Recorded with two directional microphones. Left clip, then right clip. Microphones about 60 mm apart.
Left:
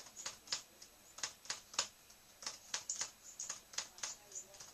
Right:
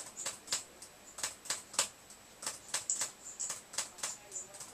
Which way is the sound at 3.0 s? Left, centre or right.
Left.